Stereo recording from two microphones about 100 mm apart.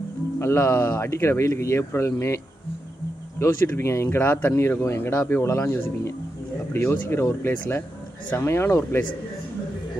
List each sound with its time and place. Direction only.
0.4 s speech: 25° left (ahead or behind)